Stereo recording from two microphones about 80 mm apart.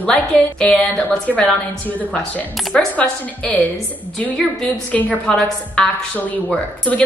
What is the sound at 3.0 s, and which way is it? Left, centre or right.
Speech, centre.